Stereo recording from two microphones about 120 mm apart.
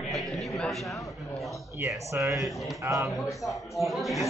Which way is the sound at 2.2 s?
15° right (ahead or behind).